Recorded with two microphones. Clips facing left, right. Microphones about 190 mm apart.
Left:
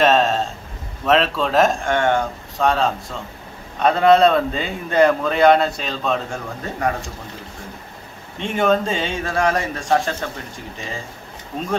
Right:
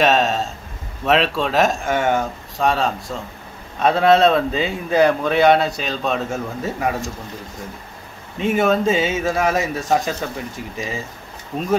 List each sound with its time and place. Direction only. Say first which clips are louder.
0.0 s a sound: left 1 dB; centre (ahead or behind)
1.0 s a man's voice: even; centre (ahead or behind)
8.4 s a man's voice: right 1 dB; 5° right (ahead or behind)